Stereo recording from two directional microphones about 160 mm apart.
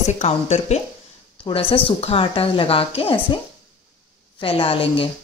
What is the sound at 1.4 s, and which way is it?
A woman's voice, 35° left (ahead or behind).